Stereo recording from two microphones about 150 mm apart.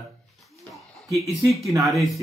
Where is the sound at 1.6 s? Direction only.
20° right (ahead or behind).